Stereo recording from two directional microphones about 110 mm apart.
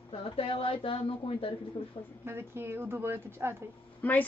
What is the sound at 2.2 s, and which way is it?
Speech, 20° right (ahead or behind).